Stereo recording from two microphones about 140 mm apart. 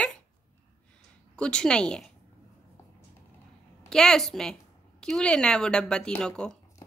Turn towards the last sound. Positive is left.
turn(degrees=5)  # may be behind; listen again after turning